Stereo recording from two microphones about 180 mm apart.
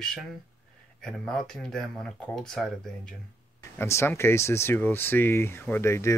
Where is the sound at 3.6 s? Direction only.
15° left (ahead or behind).